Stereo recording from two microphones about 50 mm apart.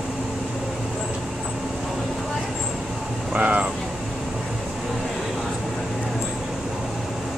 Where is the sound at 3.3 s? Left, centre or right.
Right.